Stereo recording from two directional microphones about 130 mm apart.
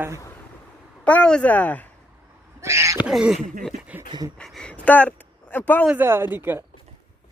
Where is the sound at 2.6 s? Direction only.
25° right (ahead or behind).